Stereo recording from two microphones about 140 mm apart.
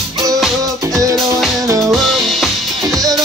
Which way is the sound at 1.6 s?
20° right (ahead or behind).